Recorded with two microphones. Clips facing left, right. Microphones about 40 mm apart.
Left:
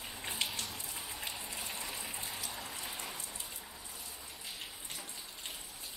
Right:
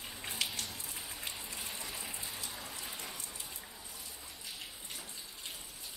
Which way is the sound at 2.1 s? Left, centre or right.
Centre.